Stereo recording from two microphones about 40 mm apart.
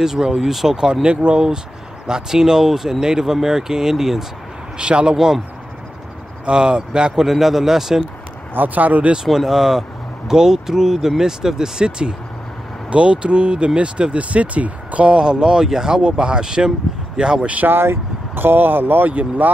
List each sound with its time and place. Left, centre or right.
0.0 s speech: centre
1.0 s speech: right; by 4.3 s centre
4.7 s speech: right
5.1 s speech: centre
6.4 s speech: right
7.2 s speech: centre
8.5 s speech: right
9.3 s speech: centre; by 17.5 s right
17.6 s speech: right